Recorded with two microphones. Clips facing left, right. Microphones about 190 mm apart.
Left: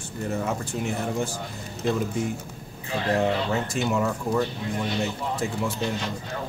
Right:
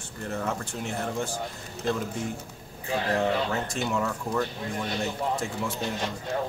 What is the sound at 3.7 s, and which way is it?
Speech, 5° left (ahead or behind).